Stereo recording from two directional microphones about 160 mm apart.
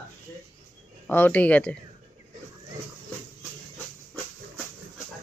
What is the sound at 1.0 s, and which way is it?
Speech, 10° left (ahead or behind).